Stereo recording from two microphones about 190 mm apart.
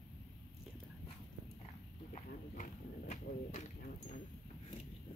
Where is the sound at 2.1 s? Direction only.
40° left (ahead or behind).